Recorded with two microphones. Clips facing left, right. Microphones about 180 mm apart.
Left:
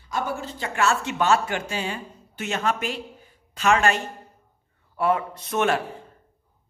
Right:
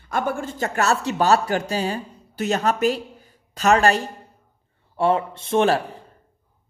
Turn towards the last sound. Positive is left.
turn(degrees=-35)  # may be behind; listen again after turning